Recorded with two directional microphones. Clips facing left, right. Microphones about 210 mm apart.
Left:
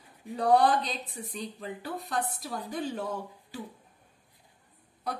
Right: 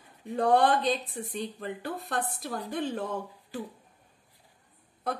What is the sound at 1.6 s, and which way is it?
A woman's voice, 50° right (ahead or behind).